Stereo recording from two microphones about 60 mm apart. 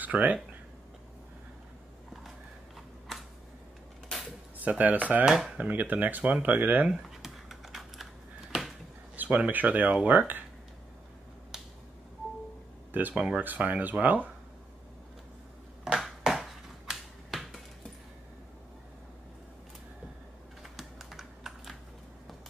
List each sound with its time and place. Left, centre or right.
0.0 s speech: right
4.6 s speech: right
5.2 s speech: centre
5.6 s speech: right
6.9 s computer keyboard: centre
9.1 s speech: right
12.9 s speech: right
16.0 s a sound: centre
16.9 s finger snapping: centre
20.6 s typing: centre